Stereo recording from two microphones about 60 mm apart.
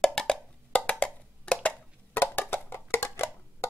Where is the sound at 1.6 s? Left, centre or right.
Left.